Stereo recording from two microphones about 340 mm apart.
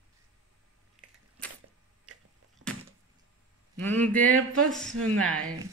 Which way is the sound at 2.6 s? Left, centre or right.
Right.